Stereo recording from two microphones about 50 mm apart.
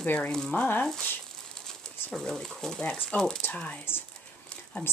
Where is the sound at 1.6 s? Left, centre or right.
Centre.